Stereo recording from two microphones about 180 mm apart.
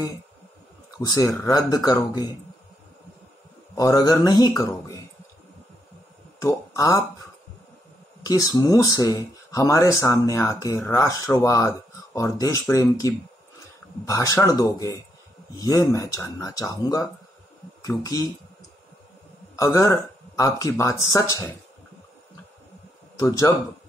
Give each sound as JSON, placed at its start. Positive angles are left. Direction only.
{"t": 0.9, "sound": "speech", "side_deg": 20}
{"t": 3.7, "sound": "speech", "side_deg": 20}
{"t": 6.4, "sound": "speech", "side_deg": 20}
{"t": 8.2, "sound": "speech", "side_deg": 20}
{"t": 19.5, "sound": "speech", "side_deg": 20}
{"t": 23.2, "sound": "speech", "side_deg": 15}